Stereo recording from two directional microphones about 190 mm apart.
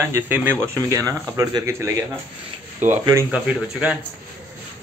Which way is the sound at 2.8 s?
40° right (ahead or behind).